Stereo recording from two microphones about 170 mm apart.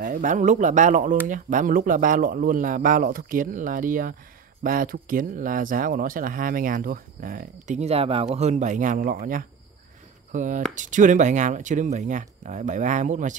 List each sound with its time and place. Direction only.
0.0 s speech: 50° right (ahead or behind)